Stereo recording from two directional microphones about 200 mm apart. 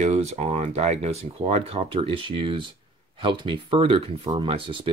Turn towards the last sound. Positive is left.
turn(degrees=-25)  # may be behind; listen again after turning